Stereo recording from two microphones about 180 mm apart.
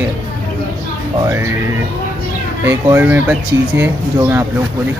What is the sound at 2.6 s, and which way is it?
Speech, 10° right (ahead or behind).